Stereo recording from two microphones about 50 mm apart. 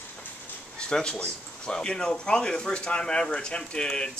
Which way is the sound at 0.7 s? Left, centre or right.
Centre.